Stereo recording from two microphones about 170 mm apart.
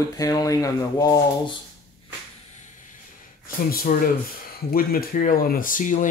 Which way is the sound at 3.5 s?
60° left (ahead or behind).